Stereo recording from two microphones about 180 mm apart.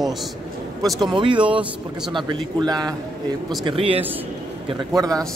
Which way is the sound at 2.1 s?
20° right (ahead or behind).